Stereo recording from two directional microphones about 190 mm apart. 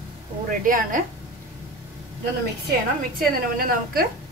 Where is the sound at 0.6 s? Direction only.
45° right (ahead or behind).